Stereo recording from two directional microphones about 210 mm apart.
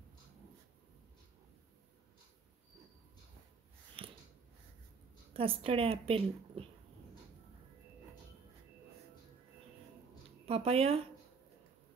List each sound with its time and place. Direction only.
4.0 s a sound: 25° right (ahead or behind)
5.3 s a woman's voice: 25° right (ahead or behind)
10.4 s speech: 30° right (ahead or behind)